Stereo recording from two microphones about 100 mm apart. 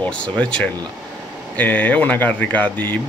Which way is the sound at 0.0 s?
10° left (ahead or behind).